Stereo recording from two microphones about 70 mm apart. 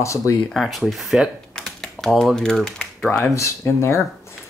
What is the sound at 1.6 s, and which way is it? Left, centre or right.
Typing, centre.